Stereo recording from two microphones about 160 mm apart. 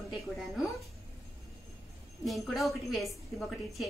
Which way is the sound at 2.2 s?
Centre (ahead or behind).